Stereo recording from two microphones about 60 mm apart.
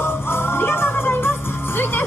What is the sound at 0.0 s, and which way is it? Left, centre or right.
Music, left.